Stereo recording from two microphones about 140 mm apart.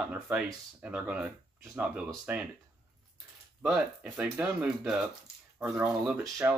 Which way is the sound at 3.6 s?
5° right (ahead or behind).